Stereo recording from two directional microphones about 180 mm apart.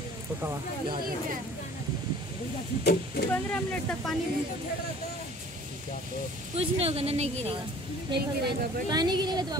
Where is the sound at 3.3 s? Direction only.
10° left (ahead or behind).